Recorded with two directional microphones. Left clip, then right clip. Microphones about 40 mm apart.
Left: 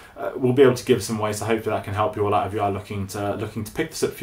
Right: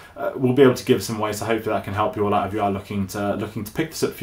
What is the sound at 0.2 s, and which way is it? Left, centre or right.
Speech, right.